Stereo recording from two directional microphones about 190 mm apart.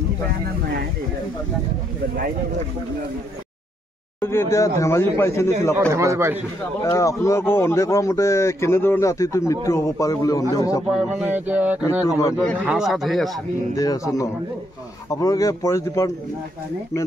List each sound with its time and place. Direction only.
4.2 s speech: 10° left (ahead or behind)
5.9 s speech: 15° right (ahead or behind)
6.8 s a man's voice: 15° left (ahead or behind)
10.9 s speech: 5° right (ahead or behind)
13.7 s speech: 20° left (ahead or behind)